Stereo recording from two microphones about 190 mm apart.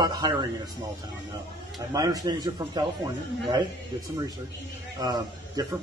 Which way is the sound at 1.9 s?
20° right (ahead or behind).